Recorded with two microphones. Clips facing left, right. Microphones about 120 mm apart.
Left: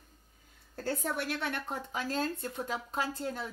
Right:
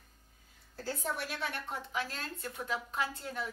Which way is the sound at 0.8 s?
60° left (ahead or behind).